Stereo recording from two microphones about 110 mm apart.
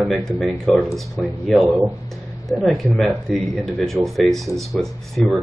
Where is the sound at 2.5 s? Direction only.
20° left (ahead or behind).